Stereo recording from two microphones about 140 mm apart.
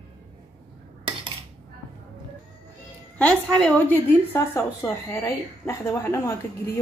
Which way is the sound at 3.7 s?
15° left (ahead or behind).